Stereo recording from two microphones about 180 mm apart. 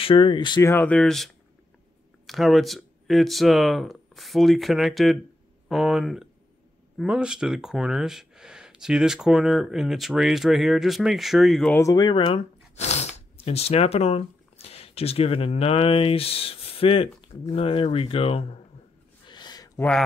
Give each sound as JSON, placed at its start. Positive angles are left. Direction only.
{"t": 0.0, "sound": "speech", "side_deg": 30}
{"t": 11.7, "sound": "speech", "side_deg": 20}
{"t": 19.2, "sound": "a sound", "side_deg": 25}